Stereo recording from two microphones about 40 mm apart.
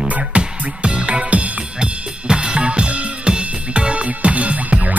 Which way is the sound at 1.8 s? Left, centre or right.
Right.